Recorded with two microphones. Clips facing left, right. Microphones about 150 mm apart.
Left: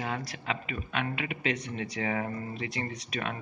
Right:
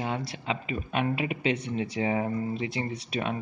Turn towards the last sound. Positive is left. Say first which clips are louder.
# right 4 dB
turn(degrees=-30)  # may be behind; listen again after turning